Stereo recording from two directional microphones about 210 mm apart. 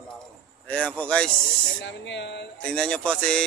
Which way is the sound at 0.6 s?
5° left (ahead or behind).